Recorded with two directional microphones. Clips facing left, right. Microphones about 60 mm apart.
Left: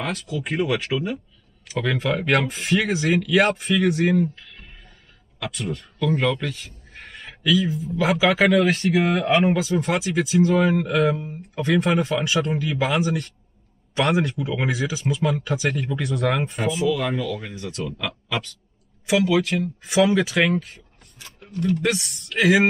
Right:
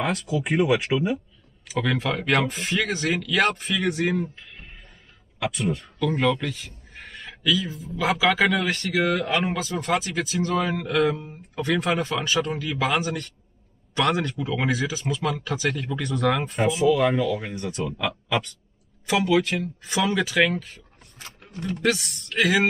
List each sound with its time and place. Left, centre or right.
0.3 s speech: centre
4.2 s music: right
5.4 s speech: centre
5.9 s a man's voice: centre
8.9 s speech: left
9.4 s speech: centre
16.9 s speech: centre
21.8 s speech: centre